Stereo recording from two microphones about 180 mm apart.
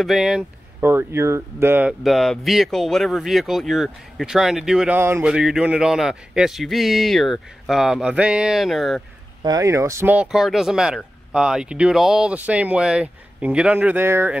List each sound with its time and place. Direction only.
0.0 s speech: centre (ahead or behind)
9.4 s speech: 20° right (ahead or behind)